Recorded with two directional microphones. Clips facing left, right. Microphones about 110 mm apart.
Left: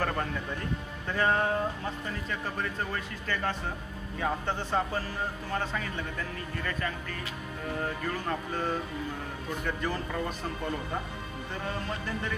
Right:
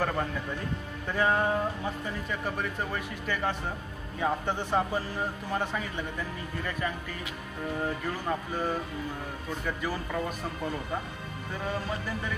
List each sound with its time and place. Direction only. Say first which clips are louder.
0.0 s speech: right 1 dB; 5° right (ahead or behind)
8.3 s speech: right 2 dB; 10° right (ahead or behind)
9.8 s speech: even; 5° right (ahead or behind)